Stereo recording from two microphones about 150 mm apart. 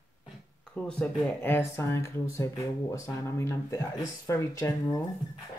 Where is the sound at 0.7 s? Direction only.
5° left (ahead or behind); by 5.0 s 20° left (ahead or behind).